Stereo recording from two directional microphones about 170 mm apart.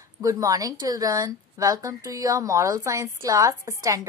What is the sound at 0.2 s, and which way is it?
Speech, 20° right (ahead or behind).